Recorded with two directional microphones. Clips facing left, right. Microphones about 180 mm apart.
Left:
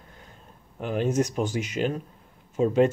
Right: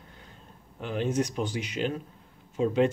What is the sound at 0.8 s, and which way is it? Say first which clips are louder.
Speech: left 3 dB; 45° left (ahead or behind).